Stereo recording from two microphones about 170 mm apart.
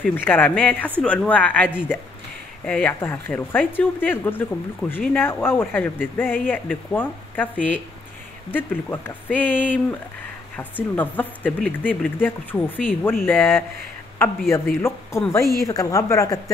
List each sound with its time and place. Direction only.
0.0 s speech: 10° left (ahead or behind)
14.8 s speech: 15° left (ahead or behind)